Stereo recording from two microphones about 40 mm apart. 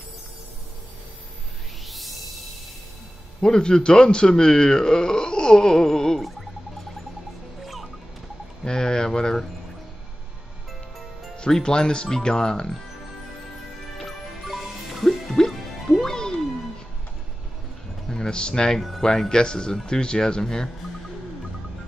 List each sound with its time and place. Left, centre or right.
1.9 s music: centre
3.3 s a man's voice: centre
7.6 s fowl: centre
8.6 s a sound: centre
11.3 s speech: centre
13.9 s music: centre
18.1 s speech: centre
18.8 s speech: centre
19.0 s speech: centre